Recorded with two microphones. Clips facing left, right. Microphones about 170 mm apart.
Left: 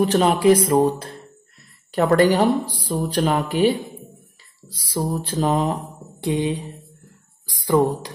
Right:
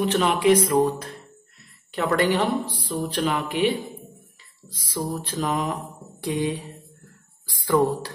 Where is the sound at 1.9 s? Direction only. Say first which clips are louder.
Left 6 dB; 40° left (ahead or behind).